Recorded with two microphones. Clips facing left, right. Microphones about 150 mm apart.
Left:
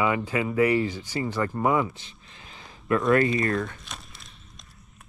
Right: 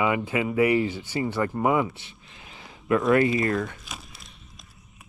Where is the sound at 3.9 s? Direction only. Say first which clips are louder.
Right 1 dB; centre (ahead or behind).